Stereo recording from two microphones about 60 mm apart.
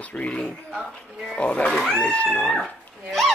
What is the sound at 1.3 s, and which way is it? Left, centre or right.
Speech, centre.